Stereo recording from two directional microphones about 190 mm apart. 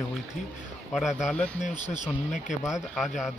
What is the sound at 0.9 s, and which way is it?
Speech, centre (ahead or behind).